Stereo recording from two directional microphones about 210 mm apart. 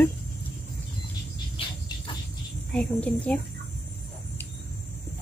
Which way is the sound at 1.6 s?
25° left (ahead or behind).